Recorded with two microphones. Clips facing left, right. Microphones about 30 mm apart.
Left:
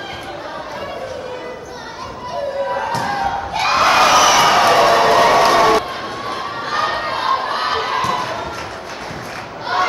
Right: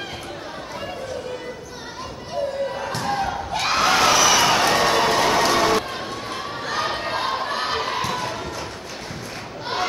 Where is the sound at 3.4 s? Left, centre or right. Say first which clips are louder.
Left 5 dB; centre.